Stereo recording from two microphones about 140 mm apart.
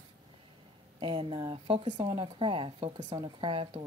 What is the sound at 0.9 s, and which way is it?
Speech, 40° right (ahead or behind).